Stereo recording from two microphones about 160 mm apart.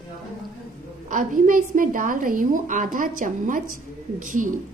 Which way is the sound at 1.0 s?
55° right (ahead or behind).